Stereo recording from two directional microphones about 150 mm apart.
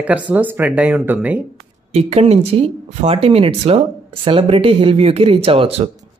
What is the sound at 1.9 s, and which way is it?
Speech, 45° right (ahead or behind).